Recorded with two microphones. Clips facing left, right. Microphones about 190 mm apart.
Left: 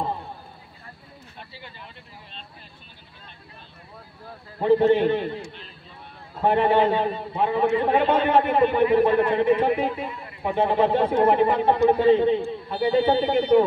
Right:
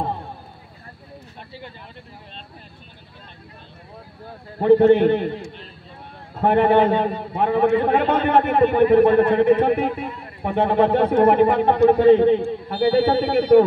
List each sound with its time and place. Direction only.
4.6 s a man's voice: 55° right (ahead or behind)